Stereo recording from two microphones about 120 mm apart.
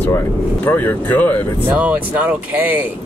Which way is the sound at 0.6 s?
15° left (ahead or behind).